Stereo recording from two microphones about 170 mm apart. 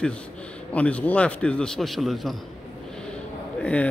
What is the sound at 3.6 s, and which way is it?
Speech, 10° left (ahead or behind).